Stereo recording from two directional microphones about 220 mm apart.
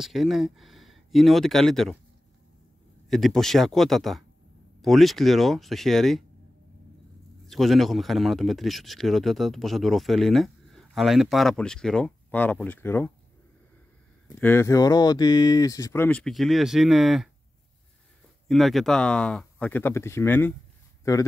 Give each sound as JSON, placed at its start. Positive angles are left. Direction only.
{"t": 0.0, "sound": "speech", "side_deg": 0}
{"t": 3.1, "sound": "speech", "side_deg": 0}
{"t": 7.4, "sound": "speech", "side_deg": 0}
{"t": 14.2, "sound": "speech", "side_deg": 10}
{"t": 18.5, "sound": "a man's voice", "side_deg": 0}